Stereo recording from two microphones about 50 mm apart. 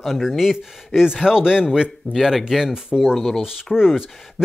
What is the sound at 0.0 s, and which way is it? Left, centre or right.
Speech, centre.